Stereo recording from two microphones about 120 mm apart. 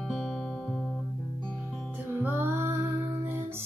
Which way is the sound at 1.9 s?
15° right (ahead or behind).